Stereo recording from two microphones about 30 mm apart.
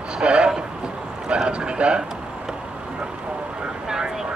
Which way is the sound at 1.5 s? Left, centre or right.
Right.